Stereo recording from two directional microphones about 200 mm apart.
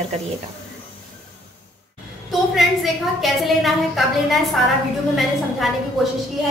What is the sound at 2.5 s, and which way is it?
A woman's voice, centre (ahead or behind).